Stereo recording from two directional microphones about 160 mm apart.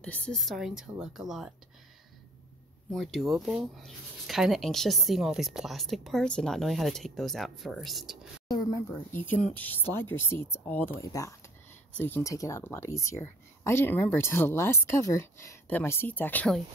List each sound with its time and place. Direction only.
0.0 s speech: 10° left (ahead or behind)
2.9 s speech: centre (ahead or behind)
8.5 s speech: 20° left (ahead or behind); by 16.6 s 5° left (ahead or behind)